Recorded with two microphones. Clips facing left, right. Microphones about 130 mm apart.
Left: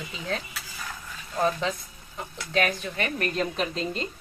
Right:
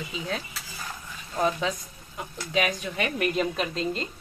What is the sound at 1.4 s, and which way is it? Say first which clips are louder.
A woman's voice: even; 10° right (ahead or behind).